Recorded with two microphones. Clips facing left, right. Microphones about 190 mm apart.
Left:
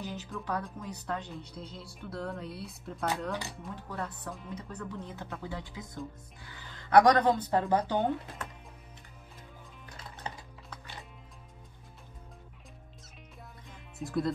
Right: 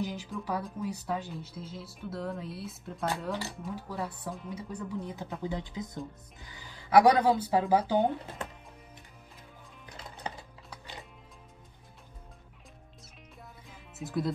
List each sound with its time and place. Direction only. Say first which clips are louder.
0.0 s music: right 5 dB; 10° right (ahead or behind)
0.3 s speech: right 1 dB; 5° right (ahead or behind)
13.7 s music: left 1 dB; centre (ahead or behind)